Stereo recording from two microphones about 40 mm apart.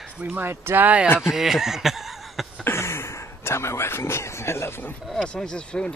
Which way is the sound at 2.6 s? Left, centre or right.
Left.